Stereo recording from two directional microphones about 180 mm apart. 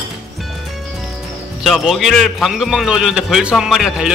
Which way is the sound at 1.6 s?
Centre (ahead or behind).